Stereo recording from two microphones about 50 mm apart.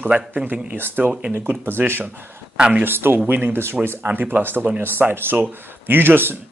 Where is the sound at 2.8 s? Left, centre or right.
Right.